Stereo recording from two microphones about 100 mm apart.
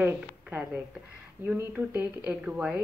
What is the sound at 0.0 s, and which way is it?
A woman's voice, 20° right (ahead or behind).